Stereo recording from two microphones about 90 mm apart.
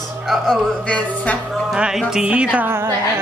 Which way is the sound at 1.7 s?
10° right (ahead or behind).